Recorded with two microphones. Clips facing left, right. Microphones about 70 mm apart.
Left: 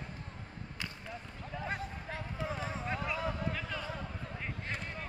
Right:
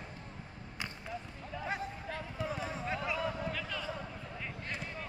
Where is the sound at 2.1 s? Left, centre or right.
Left.